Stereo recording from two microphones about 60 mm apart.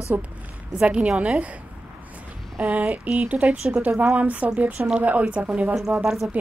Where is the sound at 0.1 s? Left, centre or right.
Right.